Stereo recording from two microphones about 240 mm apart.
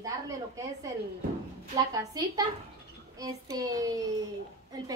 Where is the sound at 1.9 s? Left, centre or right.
Centre.